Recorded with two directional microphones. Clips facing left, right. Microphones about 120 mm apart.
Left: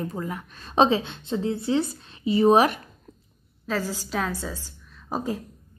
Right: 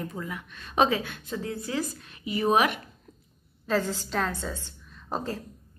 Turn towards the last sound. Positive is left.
turn(degrees=5)  # may be behind; listen again after turning